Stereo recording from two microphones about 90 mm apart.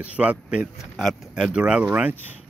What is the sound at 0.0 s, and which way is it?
Speech, 15° right (ahead or behind).